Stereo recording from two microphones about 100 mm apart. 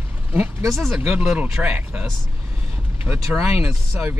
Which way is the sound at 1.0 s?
10° right (ahead or behind).